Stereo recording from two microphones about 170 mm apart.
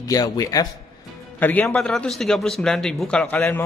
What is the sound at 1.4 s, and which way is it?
Speech, 10° left (ahead or behind).